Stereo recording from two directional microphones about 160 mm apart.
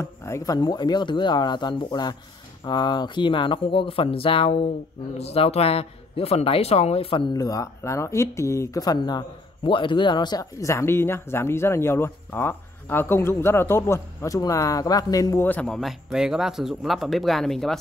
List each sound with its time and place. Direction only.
0.0 s speech: 15° left (ahead or behind); by 7.2 s 35° left (ahead or behind)
7.3 s speech: 20° left (ahead or behind); by 17.7 s centre (ahead or behind)